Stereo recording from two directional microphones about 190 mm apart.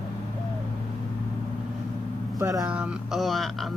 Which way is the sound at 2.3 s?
20° right (ahead or behind).